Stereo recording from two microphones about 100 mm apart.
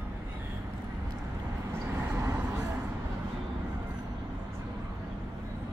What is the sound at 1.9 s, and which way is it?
Vehicle, 25° right (ahead or behind).